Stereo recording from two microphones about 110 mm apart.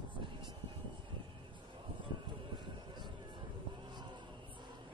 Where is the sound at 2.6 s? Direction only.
45° right (ahead or behind).